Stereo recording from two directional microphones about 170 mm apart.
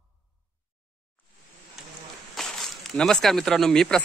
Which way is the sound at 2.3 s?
Centre (ahead or behind).